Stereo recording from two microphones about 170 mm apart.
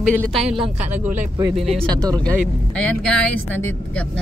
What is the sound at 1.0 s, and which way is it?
Speech, 15° right (ahead or behind).